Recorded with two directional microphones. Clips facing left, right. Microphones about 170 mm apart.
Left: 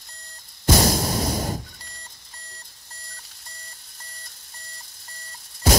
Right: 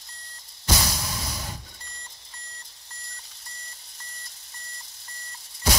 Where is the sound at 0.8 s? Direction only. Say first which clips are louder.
Left 10 dB; 45° left (ahead or behind).